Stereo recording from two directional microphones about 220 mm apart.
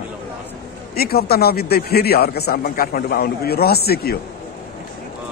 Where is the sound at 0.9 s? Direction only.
45° left (ahead or behind).